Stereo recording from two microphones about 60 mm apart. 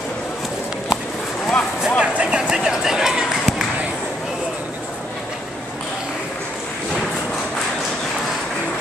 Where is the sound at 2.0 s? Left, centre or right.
Centre.